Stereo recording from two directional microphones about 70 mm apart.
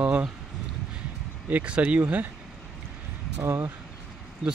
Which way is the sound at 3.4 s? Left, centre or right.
Right.